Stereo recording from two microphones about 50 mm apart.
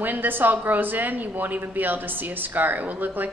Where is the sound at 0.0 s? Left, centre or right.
Right.